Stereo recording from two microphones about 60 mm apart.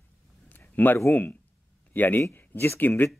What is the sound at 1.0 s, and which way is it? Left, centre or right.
Speech, left.